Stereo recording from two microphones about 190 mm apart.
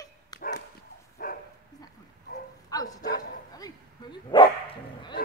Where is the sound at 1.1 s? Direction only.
50° left (ahead or behind).